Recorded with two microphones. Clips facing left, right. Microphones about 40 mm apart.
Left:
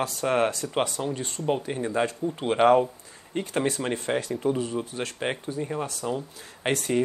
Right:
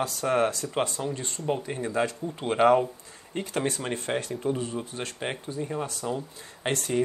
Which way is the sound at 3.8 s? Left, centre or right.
Centre.